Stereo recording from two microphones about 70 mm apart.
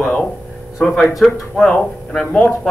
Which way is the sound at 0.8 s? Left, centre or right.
Centre.